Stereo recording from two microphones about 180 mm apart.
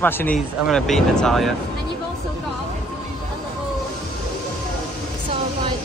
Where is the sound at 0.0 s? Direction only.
10° left (ahead or behind).